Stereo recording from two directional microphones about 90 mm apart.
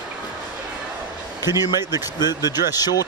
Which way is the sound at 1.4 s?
50° left (ahead or behind).